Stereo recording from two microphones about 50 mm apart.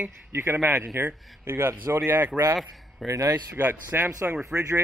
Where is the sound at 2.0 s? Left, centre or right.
Right.